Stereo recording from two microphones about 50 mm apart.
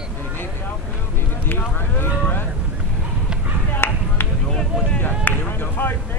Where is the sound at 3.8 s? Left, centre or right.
Left.